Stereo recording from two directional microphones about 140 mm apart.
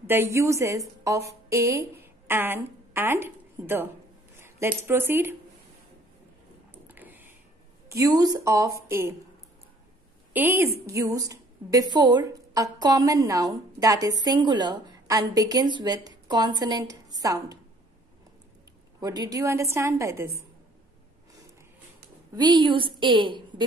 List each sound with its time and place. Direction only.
0.0 s a woman's voice: 15° right (ahead or behind)
6.7 s a sound: 15° right (ahead or behind)
7.9 s a woman's voice: 25° right (ahead or behind)
10.3 s a woman's voice: 15° right (ahead or behind)
18.9 s a woman's voice: 25° right (ahead or behind)
22.3 s a woman's voice: 30° right (ahead or behind)